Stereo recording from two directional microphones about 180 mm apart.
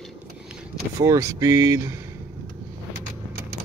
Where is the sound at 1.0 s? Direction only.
20° right (ahead or behind).